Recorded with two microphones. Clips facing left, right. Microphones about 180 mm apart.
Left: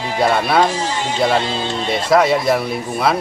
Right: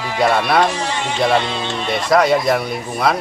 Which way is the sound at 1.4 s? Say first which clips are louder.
Left 1 dB; 35° left (ahead or behind).